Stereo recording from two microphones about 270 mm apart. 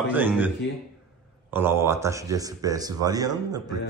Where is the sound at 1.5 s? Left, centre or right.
Centre.